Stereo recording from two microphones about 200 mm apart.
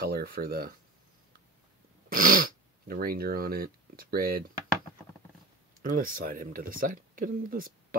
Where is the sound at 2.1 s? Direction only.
45° right (ahead or behind).